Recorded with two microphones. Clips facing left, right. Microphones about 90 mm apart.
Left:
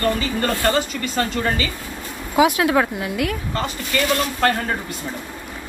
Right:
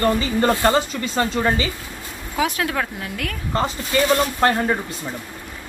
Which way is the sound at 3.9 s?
20° right (ahead or behind).